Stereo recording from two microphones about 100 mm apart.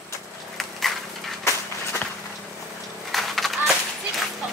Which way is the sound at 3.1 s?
Centre (ahead or behind).